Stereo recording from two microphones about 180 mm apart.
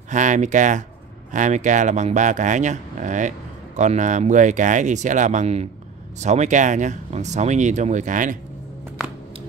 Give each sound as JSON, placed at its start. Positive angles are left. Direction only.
{"t": 0.1, "sound": "speech", "side_deg": -45}